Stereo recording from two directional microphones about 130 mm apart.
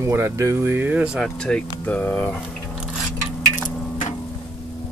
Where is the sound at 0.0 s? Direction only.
20° right (ahead or behind).